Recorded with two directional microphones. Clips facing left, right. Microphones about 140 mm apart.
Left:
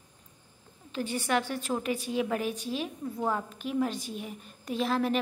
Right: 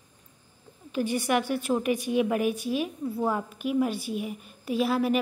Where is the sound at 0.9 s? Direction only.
15° right (ahead or behind).